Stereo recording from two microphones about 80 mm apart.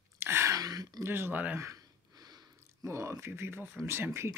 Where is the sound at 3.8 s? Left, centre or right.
Right.